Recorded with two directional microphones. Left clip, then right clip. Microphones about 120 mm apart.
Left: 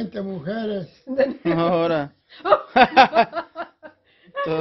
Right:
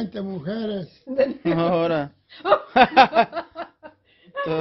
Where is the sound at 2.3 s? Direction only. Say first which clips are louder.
Left 1 dB; 15° right (ahead or behind).